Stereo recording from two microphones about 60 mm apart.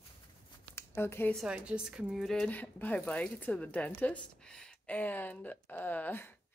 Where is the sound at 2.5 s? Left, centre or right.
Left.